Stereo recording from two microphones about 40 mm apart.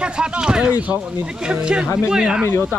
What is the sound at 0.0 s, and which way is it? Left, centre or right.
Speech, right.